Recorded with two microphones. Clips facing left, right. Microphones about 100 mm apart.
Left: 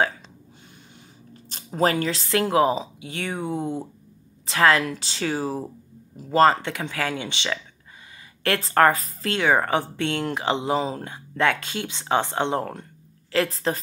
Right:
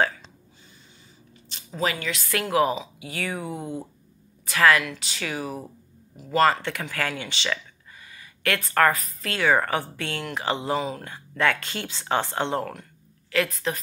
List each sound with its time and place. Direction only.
1.5 s speech: 45° left (ahead or behind)
2.1 s speech: 30° left (ahead or behind)
6.6 s speech: 20° left (ahead or behind)
11.1 s speech: 20° left (ahead or behind)
13.3 s speech: 30° left (ahead or behind)